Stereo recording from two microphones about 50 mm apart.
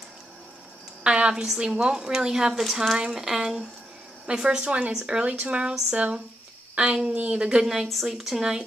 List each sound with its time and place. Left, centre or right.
1.0 s a woman's voice: centre